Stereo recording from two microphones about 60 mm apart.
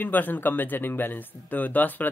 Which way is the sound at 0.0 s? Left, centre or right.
Left.